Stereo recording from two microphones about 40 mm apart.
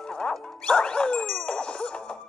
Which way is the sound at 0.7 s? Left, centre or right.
Left.